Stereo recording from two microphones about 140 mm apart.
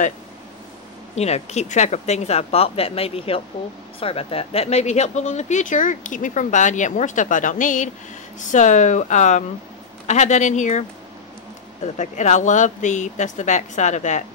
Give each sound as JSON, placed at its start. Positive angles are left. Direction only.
{"t": 1.1, "sound": "speech", "side_deg": 50}